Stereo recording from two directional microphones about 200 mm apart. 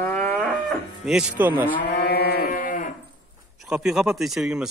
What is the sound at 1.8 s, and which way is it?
Livestock, 55° left (ahead or behind).